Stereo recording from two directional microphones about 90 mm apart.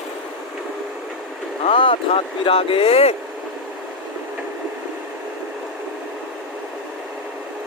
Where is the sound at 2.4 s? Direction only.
90° left.